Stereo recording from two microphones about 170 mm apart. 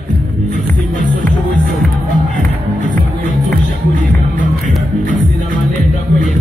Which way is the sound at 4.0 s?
50° right (ahead or behind).